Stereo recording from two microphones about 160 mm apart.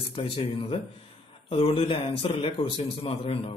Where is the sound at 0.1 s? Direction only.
35° left (ahead or behind).